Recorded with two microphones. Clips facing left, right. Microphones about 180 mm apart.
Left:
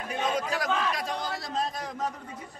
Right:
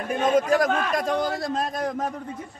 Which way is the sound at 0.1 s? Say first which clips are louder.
Right 9 dB; 50° right (ahead or behind).